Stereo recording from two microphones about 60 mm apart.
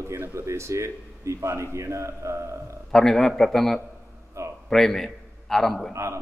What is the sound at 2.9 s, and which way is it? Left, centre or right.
A man's voice, centre.